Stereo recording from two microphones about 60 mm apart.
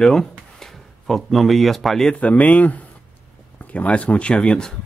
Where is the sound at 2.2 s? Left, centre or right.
Left.